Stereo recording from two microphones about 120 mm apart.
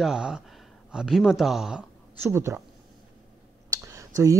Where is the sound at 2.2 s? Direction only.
20° right (ahead or behind).